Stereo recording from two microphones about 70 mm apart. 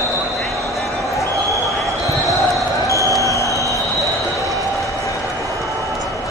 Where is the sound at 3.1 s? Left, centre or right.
Left.